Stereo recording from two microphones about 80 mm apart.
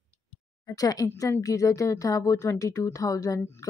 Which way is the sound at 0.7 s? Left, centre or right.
Left.